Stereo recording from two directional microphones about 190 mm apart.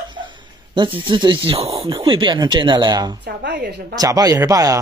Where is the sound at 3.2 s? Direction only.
65° right (ahead or behind).